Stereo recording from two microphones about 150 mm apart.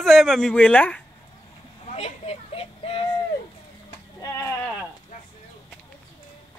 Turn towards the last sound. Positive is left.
turn(degrees=15)  # may be behind; listen again after turning